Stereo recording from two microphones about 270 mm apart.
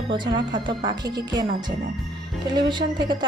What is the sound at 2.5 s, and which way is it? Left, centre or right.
Speech, centre.